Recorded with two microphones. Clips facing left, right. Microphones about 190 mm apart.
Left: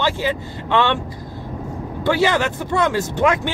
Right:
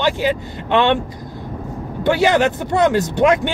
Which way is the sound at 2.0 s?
20° right (ahead or behind).